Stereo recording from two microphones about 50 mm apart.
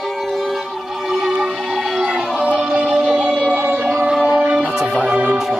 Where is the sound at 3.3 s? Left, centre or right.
Right.